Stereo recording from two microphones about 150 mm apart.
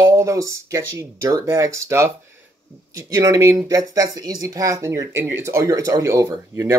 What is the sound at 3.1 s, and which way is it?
Speech, 20° right (ahead or behind).